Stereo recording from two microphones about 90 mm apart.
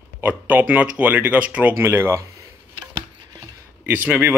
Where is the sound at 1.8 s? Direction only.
30° right (ahead or behind).